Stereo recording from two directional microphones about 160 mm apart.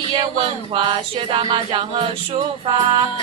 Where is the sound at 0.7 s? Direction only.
35° right (ahead or behind).